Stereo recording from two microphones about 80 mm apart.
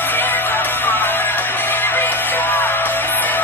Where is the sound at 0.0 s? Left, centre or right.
Left.